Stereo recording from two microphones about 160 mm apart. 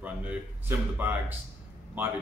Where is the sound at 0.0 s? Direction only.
10° right (ahead or behind).